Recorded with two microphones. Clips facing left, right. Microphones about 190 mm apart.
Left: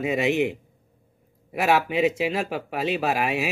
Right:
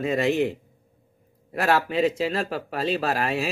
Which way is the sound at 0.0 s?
15° left (ahead or behind).